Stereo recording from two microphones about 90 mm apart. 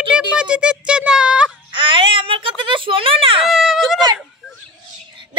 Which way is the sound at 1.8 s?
70° right (ahead or behind).